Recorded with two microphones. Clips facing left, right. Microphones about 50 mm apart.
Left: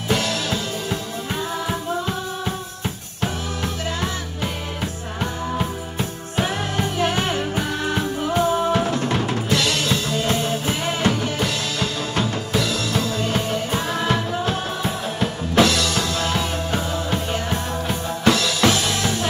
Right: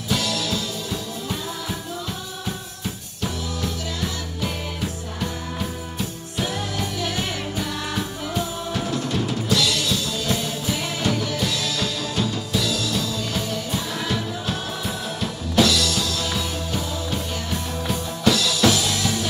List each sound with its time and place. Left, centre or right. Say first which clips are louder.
0.1 s music: left 2 dB; left